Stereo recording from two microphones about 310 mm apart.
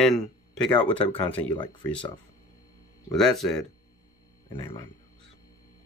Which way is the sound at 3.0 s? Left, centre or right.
Centre.